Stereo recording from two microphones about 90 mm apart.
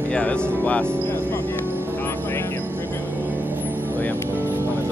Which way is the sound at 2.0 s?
20° left (ahead or behind).